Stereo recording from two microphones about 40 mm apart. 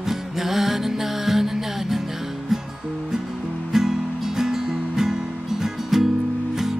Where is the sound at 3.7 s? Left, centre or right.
Centre.